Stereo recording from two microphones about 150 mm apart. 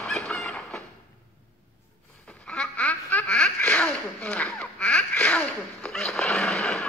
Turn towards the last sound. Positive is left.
turn(degrees=5)  # may be behind; listen again after turning